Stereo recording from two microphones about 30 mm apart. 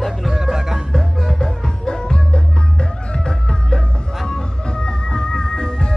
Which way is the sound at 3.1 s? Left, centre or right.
Left.